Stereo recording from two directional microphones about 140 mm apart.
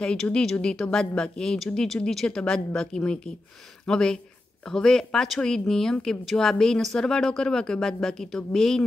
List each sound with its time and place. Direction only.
0.0 s speech: 5° left (ahead or behind)